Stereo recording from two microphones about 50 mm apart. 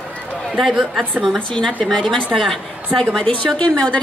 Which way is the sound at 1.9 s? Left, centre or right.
Centre.